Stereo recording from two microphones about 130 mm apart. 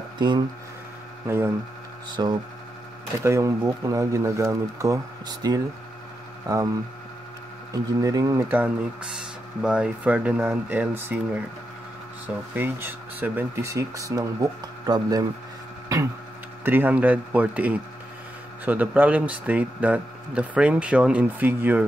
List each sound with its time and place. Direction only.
1.2 s speech: 20° right (ahead or behind)
2.2 s speech: 35° right (ahead or behind)
3.2 s speech: 20° right (ahead or behind)
8.5 s speech: 10° right (ahead or behind)
12.5 s speech: 15° right (ahead or behind)
16.6 s speech: 15° right (ahead or behind)